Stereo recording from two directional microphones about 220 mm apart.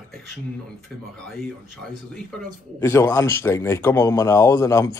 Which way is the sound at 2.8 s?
10° left (ahead or behind).